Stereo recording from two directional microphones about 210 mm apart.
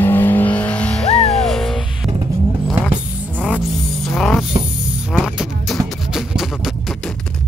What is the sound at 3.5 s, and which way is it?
Music, centre (ahead or behind).